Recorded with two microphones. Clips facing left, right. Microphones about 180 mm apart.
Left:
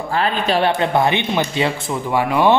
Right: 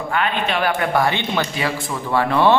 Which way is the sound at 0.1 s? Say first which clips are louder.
Left 3 dB; 35° left (ahead or behind).